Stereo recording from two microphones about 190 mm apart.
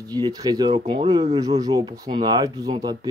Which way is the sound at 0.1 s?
20° right (ahead or behind).